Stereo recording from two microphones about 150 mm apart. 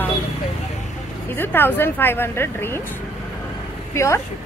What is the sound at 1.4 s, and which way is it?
A woman's voice, 15° left (ahead or behind).